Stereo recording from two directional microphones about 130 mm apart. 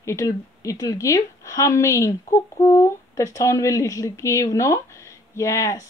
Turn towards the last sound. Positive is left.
turn(degrees=25)  # may be behind; listen again after turning